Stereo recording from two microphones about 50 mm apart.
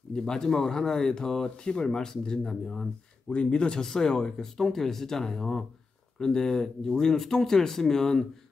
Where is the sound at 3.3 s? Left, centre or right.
Left.